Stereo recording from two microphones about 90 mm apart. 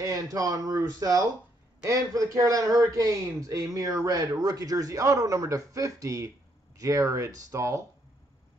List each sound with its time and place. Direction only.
0.0 s a man's voice: 40° right (ahead or behind)